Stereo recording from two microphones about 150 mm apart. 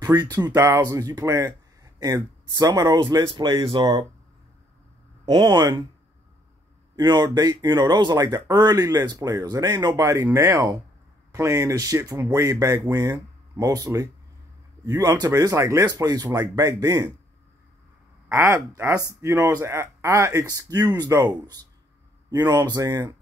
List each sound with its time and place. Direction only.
0.0 s speech: 25° right (ahead or behind)
5.2 s speech: 30° right (ahead or behind)
7.0 s speech: 25° right (ahead or behind)
18.3 s speech: 15° right (ahead or behind)